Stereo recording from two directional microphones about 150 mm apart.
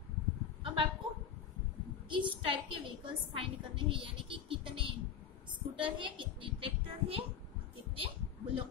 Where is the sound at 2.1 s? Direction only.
35° right (ahead or behind).